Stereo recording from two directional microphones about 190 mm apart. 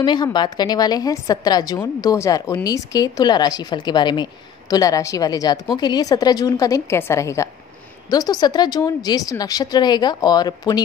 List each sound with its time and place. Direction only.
0.0 s a woman's voice: 25° left (ahead or behind)